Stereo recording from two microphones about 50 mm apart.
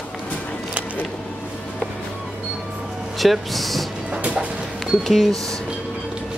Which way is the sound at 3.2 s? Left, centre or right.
Centre.